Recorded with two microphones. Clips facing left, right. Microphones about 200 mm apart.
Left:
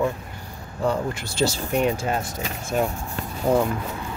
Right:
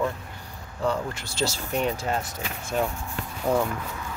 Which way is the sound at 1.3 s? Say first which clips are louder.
Left 5 dB; 55° left (ahead or behind).